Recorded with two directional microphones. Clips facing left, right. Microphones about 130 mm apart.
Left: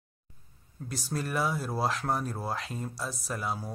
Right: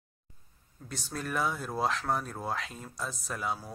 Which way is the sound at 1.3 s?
5° left (ahead or behind).